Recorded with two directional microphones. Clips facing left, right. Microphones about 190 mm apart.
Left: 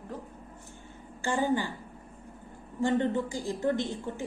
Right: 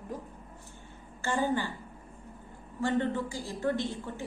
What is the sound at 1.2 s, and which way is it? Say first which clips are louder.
Speech: left 2 dB; 15° left (ahead or behind).